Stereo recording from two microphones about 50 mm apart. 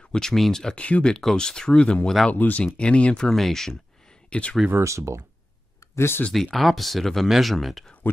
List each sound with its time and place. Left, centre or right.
0.1 s speech: centre
0.7 s speech: left
2.3 s speech: left
2.6 s speech: left
3.3 s speech: centre
4.3 s speech: left
4.7 s speech: right
5.9 s speech: left
6.3 s speech: centre